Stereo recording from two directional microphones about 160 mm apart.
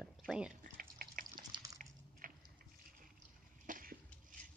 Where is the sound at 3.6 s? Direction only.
55° right (ahead or behind).